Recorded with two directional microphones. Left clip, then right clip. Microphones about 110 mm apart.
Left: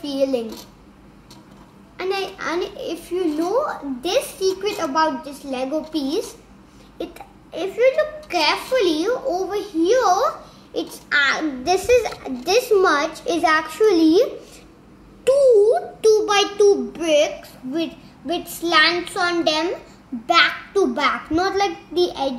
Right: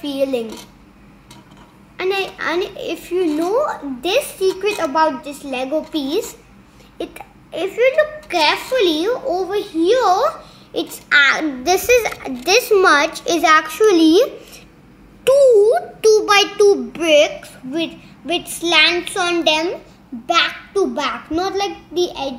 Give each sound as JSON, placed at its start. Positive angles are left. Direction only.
{"t": 0.0, "sound": "a child's voice", "side_deg": -10}
{"t": 2.0, "sound": "a child's voice", "side_deg": -10}
{"t": 17.7, "sound": "a child's voice", "side_deg": -5}